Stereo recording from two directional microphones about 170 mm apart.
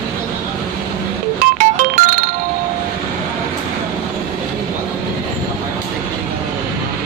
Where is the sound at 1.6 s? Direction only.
55° right (ahead or behind).